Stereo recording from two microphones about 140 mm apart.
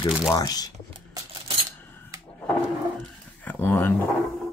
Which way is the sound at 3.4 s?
15° left (ahead or behind).